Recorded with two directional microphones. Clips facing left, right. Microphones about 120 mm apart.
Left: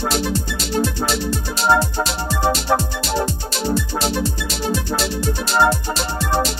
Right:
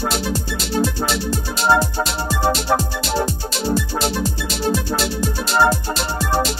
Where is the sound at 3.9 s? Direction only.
Centre (ahead or behind).